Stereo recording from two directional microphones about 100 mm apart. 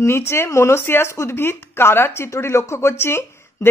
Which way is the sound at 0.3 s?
25° left (ahead or behind).